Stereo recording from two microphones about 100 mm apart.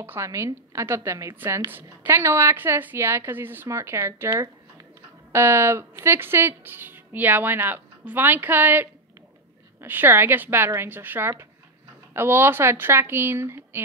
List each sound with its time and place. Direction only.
0.0 s speech: 25° right (ahead or behind)
5.3 s speech: 25° right (ahead or behind)